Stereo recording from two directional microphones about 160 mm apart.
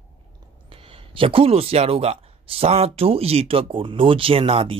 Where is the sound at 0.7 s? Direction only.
35° right (ahead or behind).